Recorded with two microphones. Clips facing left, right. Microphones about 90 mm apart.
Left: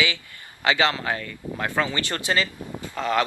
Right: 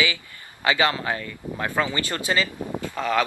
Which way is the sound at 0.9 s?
30° right (ahead or behind).